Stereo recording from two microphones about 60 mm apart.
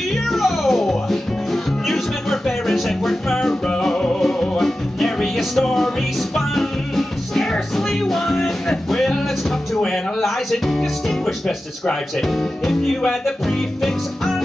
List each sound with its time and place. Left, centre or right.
0.3 s music: centre
9.8 s speech: centre